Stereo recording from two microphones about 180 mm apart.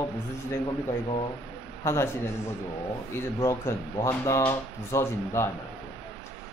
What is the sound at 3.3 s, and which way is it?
Speech, 15° left (ahead or behind).